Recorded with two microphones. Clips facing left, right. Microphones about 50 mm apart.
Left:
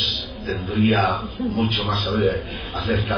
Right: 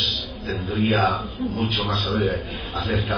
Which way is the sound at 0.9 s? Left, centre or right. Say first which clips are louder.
Even; centre.